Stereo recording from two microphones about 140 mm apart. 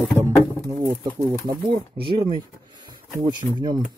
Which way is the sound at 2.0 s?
40° right (ahead or behind).